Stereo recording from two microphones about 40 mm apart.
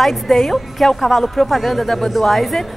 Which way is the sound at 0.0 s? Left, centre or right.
Centre.